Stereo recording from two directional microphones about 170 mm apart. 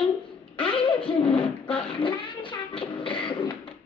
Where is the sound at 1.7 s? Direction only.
30° left (ahead or behind).